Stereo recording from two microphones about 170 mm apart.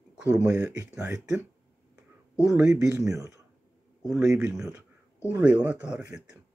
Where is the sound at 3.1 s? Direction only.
20° right (ahead or behind).